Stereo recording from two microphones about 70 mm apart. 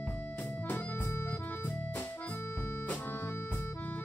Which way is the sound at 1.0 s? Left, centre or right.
Left.